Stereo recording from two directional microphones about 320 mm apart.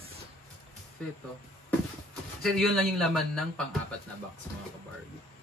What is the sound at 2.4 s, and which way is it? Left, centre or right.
Speech, centre.